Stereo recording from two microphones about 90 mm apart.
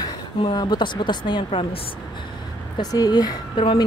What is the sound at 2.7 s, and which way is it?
Speech, 50° left (ahead or behind).